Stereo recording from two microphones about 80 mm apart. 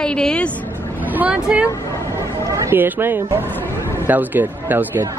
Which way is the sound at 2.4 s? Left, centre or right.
Right.